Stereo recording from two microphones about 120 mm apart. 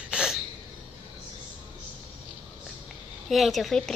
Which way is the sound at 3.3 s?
Centre (ahead or behind).